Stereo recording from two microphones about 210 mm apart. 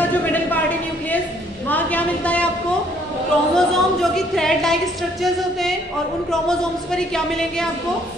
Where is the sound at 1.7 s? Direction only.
5° left (ahead or behind).